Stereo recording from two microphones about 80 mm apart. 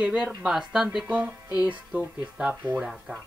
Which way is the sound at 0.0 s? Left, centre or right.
Centre.